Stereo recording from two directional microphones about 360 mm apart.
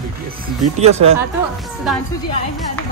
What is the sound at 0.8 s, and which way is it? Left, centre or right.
Speech, centre.